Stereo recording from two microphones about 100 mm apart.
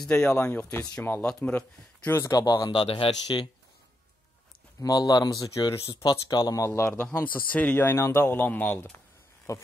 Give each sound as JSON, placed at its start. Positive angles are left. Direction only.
{"t": 0.0, "sound": "speech", "side_deg": 5}
{"t": 0.3, "sound": "speech", "side_deg": 25}
{"t": 1.2, "sound": "speech", "side_deg": 10}
{"t": 2.2, "sound": "speech", "side_deg": 40}
{"t": 2.7, "sound": "speech", "side_deg": 60}
{"t": 4.7, "sound": "speech", "side_deg": 40}
{"t": 6.9, "sound": "speech", "side_deg": 10}
{"t": 9.5, "sound": "speech", "side_deg": 30}